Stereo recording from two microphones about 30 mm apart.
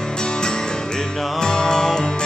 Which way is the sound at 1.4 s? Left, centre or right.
Left.